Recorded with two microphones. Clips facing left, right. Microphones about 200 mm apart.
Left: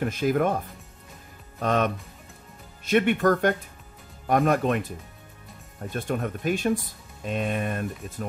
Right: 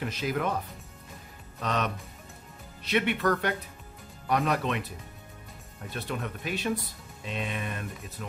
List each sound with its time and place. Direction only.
0.0 s speech: 50° left (ahead or behind)
1.6 s speech: 50° left (ahead or behind)